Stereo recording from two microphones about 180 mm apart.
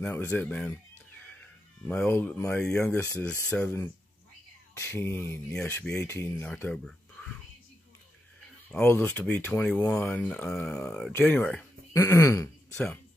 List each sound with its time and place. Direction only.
0.0 s speech: 10° left (ahead or behind)
1.9 s speech: 10° left (ahead or behind)
8.7 s speech: 15° left (ahead or behind)
11.9 s speech: 15° left (ahead or behind)
12.7 s speech: 5° left (ahead or behind)